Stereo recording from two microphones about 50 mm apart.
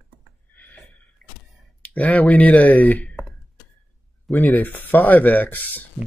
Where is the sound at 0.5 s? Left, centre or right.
Left.